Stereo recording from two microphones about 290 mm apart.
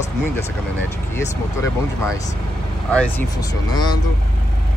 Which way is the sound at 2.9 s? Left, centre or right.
Centre.